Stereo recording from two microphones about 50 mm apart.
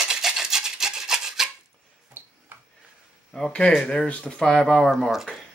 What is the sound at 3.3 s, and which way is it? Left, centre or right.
Speech, centre.